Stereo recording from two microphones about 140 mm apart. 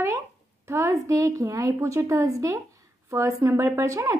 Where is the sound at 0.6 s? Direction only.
20° right (ahead or behind).